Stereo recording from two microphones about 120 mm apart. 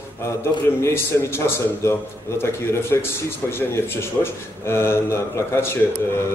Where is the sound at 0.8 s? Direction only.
20° left (ahead or behind).